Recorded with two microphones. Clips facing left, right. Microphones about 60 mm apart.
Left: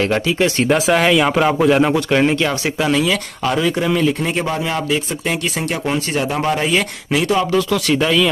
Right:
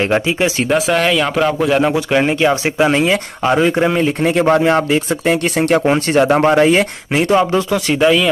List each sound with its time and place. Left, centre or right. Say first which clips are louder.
0.7 s speech: even; centre
2.2 s speech: right 3 dB; centre
2.9 s speech: right 3 dB; right
4.5 s speech: right 7 dB; right